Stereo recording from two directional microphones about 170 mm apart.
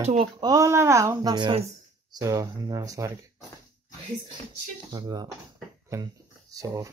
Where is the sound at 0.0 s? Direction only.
40° right (ahead or behind).